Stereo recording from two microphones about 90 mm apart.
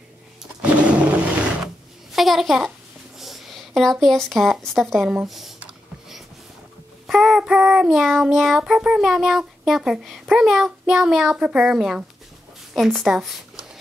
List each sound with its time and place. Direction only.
0.4 s roar: 15° right (ahead or behind)
2.1 s a child's voice: centre (ahead or behind)
5.6 s a sound: 5° right (ahead or behind)
7.1 s speech: 5° right (ahead or behind)